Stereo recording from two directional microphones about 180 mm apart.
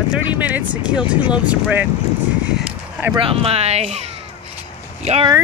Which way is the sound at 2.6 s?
5° right (ahead or behind).